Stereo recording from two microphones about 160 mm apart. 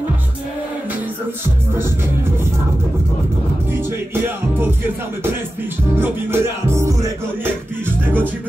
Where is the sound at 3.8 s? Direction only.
15° right (ahead or behind).